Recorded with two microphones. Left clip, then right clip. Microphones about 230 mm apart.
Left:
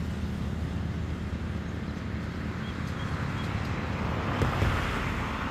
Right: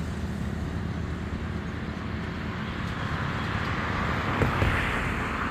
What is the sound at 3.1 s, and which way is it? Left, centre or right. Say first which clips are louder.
Vehicle: right 5 dB; right.